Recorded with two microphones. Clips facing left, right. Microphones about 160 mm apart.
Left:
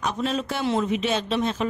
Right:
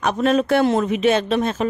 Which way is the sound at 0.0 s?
60° right (ahead or behind).